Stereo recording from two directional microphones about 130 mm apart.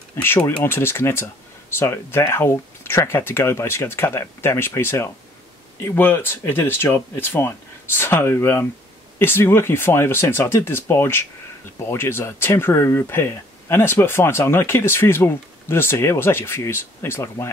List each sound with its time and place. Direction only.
0.1 s speech: 20° left (ahead or behind)